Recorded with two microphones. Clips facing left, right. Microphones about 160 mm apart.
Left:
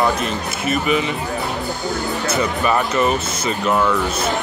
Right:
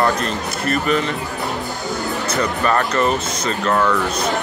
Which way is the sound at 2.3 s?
10° left (ahead or behind).